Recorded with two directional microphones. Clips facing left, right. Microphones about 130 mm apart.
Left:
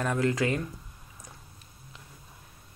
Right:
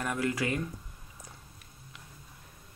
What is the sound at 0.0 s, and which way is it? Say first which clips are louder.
Speech: left 4 dB; 25° left (ahead or behind).